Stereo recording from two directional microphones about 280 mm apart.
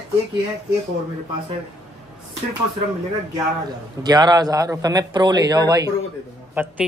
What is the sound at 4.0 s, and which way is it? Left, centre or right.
A man's voice, centre.